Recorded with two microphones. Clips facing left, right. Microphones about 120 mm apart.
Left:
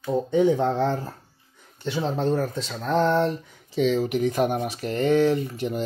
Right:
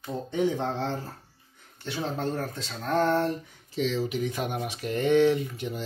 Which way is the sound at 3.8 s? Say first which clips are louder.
Left 6 dB; 50° left (ahead or behind).